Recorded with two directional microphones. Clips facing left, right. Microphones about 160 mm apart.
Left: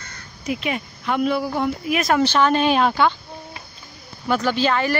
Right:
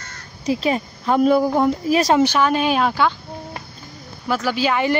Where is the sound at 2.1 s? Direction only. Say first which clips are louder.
Right 1 dB; 10° right (ahead or behind).